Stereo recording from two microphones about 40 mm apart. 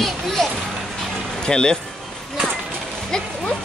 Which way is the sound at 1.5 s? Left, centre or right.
Left.